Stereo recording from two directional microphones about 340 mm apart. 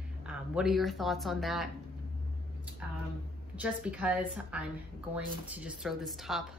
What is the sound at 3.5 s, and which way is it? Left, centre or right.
A woman's voice, centre.